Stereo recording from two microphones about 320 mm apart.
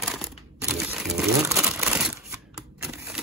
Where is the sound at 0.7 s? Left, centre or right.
Centre.